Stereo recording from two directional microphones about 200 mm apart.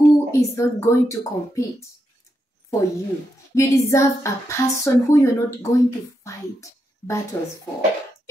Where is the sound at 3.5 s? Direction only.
15° left (ahead or behind).